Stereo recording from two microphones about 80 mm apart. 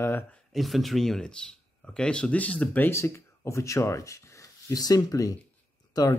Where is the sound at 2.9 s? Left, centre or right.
Left.